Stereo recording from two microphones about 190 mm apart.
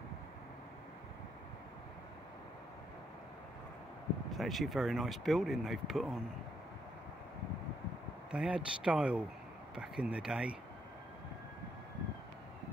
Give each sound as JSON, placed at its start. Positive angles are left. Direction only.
{"t": 4.3, "sound": "speech", "side_deg": 0}
{"t": 8.3, "sound": "speech", "side_deg": -5}